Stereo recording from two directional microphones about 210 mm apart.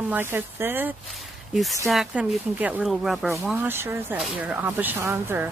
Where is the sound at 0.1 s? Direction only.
10° right (ahead or behind).